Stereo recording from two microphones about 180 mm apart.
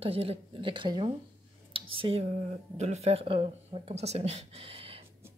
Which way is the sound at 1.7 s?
30° right (ahead or behind).